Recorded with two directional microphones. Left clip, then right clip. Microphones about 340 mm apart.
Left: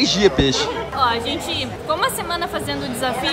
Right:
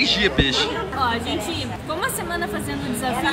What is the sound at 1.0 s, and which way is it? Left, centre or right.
A woman's voice, centre.